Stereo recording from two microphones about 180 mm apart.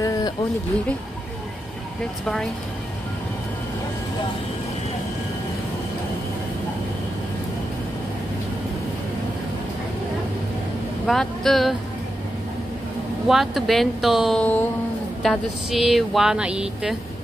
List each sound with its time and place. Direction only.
0.0 s a sound: 20° left (ahead or behind)
11.1 s speech: centre (ahead or behind)
13.3 s speech: centre (ahead or behind)